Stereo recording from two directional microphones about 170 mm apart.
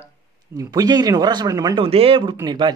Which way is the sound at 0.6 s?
20° right (ahead or behind).